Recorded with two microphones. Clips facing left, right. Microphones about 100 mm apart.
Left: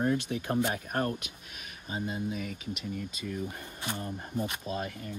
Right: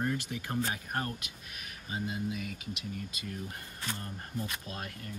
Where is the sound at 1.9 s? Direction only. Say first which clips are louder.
Left 2 dB; 55° left (ahead or behind).